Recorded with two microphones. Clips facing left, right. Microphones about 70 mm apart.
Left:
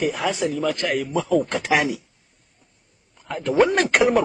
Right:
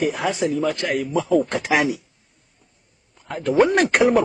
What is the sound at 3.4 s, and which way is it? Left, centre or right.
Speech, centre.